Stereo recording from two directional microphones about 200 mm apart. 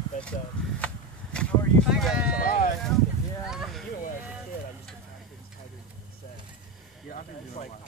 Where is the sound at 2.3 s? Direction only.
45° left (ahead or behind).